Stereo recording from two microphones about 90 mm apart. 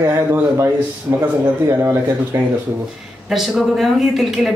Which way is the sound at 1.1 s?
15° right (ahead or behind).